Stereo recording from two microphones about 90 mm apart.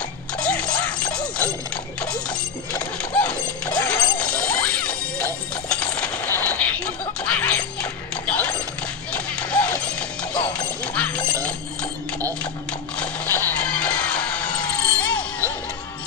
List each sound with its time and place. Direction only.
0.4 s music: 10° left (ahead or behind)
2.7 s a sound: 15° left (ahead or behind)
4.2 s music: 10° left (ahead or behind)
6.3 s a sound: 15° left (ahead or behind)
7.2 s music: 15° left (ahead or behind)
11.0 s music: 10° left (ahead or behind)
13.0 s music: 15° left (ahead or behind)